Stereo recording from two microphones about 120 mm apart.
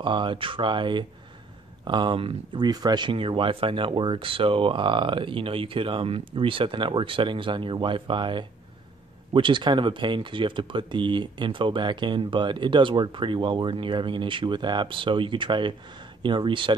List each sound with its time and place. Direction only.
0.0 s speech: 45° right (ahead or behind)